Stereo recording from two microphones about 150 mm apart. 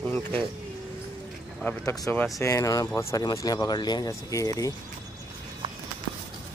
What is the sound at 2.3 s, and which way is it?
Speech, 20° left (ahead or behind).